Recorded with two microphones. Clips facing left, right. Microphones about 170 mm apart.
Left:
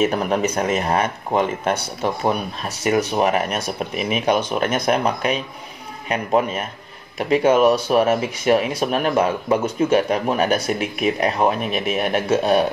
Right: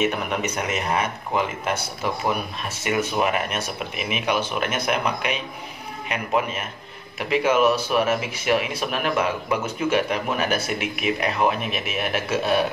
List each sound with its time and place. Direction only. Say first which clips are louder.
0.0 s speech: left 5 dB; 35° left (ahead or behind)
2.8 s speech: left 4 dB; 35° left (ahead or behind)